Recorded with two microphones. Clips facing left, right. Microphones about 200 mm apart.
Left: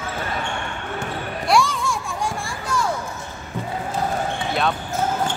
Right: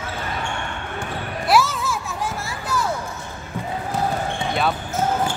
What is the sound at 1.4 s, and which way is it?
Music, 5° right (ahead or behind).